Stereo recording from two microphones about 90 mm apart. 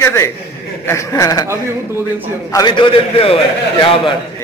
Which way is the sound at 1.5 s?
25° right (ahead or behind).